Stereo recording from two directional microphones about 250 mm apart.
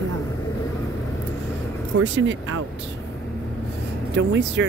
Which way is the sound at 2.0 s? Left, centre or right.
Right.